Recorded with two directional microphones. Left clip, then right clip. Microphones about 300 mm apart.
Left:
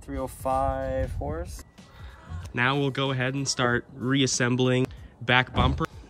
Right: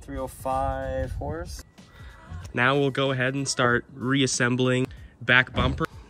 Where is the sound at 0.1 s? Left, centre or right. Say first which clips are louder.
Left 1 dB; centre.